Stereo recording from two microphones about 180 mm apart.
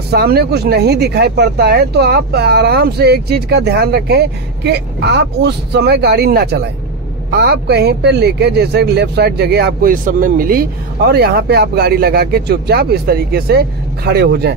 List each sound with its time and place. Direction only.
0.1 s speech: 60° right (ahead or behind)